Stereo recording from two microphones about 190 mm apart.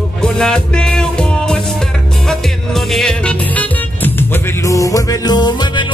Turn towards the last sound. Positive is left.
turn(degrees=20)  # may be behind; listen again after turning